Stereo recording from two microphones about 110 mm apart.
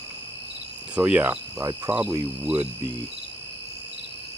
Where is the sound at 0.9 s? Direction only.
10° right (ahead or behind).